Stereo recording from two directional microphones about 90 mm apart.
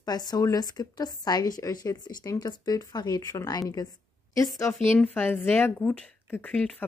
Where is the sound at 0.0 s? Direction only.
50° left (ahead or behind).